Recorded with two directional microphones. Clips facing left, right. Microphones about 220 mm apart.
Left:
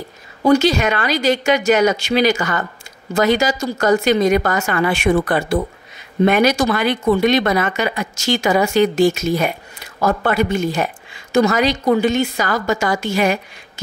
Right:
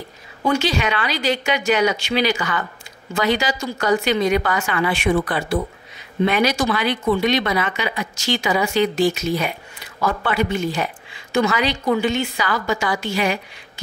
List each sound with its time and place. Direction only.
0.4 s speech: 40° left (ahead or behind)